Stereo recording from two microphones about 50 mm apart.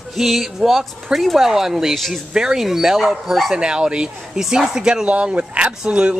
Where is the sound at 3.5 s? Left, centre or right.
Centre.